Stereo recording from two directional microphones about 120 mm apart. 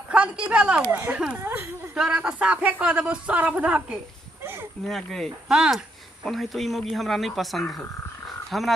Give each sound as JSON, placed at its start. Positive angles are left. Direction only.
{"t": 0.1, "sound": "speech", "side_deg": -10}
{"t": 2.0, "sound": "speech", "side_deg": -5}
{"t": 4.8, "sound": "speech", "side_deg": 5}